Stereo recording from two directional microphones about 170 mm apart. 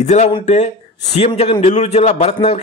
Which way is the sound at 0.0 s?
40° left (ahead or behind).